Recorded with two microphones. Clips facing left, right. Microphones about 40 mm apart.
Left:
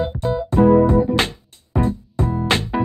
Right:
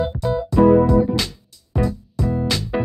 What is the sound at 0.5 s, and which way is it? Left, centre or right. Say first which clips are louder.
Music: even; left.